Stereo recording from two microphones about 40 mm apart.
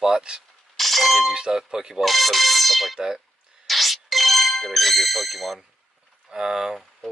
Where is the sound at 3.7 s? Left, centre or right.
Centre.